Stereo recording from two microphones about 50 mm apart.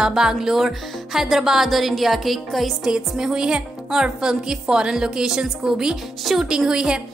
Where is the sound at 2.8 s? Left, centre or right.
Centre.